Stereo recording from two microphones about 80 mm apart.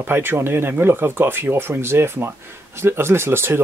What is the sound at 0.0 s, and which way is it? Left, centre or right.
Speech, right.